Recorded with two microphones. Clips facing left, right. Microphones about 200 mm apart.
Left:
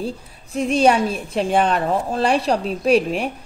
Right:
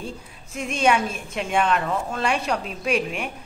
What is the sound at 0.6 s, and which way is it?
Speech, 35° left (ahead or behind).